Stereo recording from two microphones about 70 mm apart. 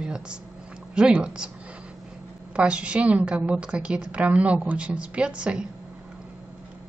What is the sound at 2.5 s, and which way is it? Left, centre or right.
Speech, centre.